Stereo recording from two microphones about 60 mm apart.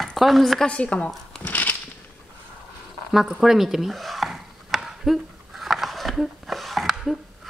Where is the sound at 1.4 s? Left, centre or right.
Left.